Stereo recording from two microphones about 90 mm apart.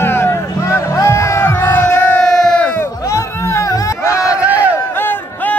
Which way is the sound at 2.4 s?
10° left (ahead or behind).